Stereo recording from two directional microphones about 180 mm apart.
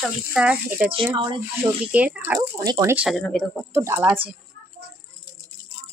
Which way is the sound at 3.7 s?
10° right (ahead or behind).